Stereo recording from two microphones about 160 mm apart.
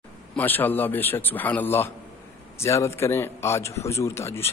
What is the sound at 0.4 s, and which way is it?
A man's voice, 10° left (ahead or behind).